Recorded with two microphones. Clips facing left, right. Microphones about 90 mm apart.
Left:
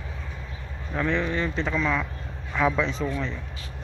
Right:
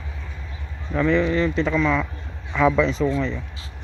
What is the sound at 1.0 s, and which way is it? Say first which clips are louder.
Speech: right 7 dB; 90° right.